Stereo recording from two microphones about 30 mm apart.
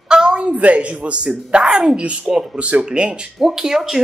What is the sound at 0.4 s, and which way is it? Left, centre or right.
Speech, right.